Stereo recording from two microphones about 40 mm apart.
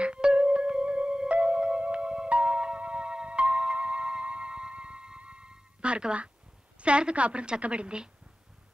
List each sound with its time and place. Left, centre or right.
0.0 s music: right
6.8 s a woman's voice: right